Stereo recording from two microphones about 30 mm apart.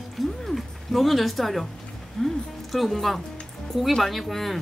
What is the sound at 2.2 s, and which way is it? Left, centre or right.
Speech, centre.